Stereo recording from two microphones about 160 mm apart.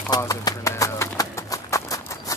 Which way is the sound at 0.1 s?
20° left (ahead or behind).